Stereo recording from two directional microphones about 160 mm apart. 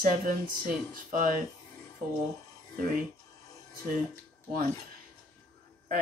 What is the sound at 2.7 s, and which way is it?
Speech, 55° right (ahead or behind).